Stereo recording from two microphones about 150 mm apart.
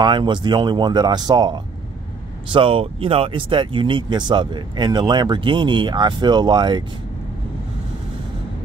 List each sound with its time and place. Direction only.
0.0 s speech: 30° right (ahead or behind)